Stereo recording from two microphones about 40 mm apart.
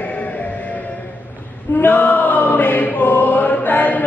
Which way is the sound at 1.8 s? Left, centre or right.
Left.